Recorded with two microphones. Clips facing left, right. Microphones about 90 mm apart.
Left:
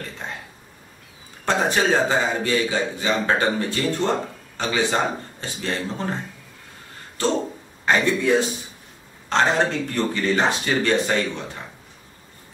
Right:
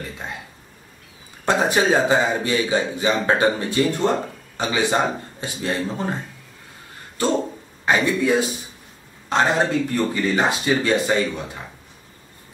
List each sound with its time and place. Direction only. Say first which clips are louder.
1.4 s speech: right 2 dB; 15° right (ahead or behind)
7.8 s speech: right 1 dB; 10° right (ahead or behind)